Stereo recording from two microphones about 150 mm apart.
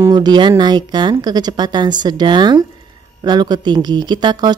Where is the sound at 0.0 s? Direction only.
30° right (ahead or behind).